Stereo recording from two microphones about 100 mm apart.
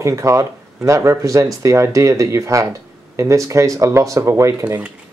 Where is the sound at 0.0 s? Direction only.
30° right (ahead or behind).